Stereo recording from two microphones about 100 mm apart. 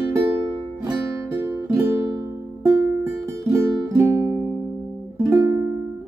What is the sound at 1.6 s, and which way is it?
Music, 35° right (ahead or behind).